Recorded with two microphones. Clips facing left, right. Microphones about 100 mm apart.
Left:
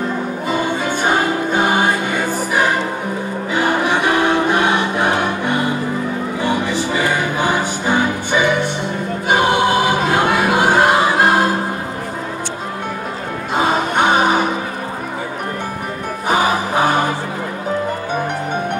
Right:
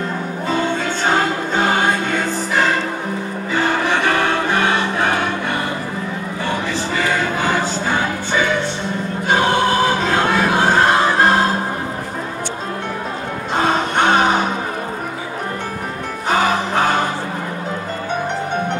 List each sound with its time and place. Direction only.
0.5 s music: 10° left (ahead or behind)
9.3 s choir: 15° left (ahead or behind)
13.6 s music: 10° left (ahead or behind)
16.3 s music: 10° left (ahead or behind)